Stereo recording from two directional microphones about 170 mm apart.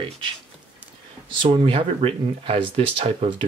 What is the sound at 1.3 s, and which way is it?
Speech, 30° right (ahead or behind).